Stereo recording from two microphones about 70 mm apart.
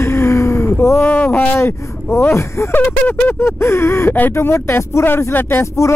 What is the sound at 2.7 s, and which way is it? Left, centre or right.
Speech, left.